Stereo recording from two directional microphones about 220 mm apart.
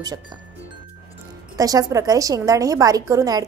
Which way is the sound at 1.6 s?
15° right (ahead or behind).